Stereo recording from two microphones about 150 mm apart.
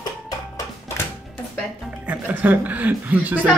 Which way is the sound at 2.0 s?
10° right (ahead or behind).